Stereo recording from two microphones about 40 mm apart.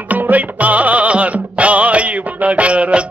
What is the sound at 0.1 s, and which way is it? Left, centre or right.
Music, right.